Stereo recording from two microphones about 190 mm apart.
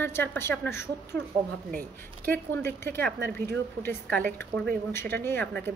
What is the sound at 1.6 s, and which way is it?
Speech, 45° right (ahead or behind).